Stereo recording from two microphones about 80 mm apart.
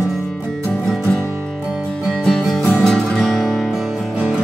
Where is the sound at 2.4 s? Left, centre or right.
Centre.